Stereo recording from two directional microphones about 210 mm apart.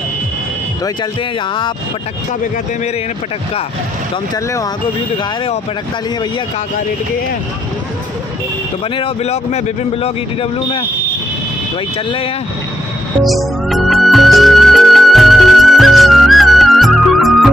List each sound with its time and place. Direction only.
8.9 s speech: 30° left (ahead or behind)
13.2 s music: centre (ahead or behind)